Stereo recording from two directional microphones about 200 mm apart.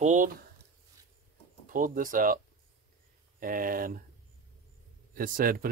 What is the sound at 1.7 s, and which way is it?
Speech, 40° right (ahead or behind).